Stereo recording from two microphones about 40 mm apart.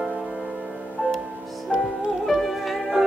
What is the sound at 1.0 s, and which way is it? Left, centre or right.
Music, left.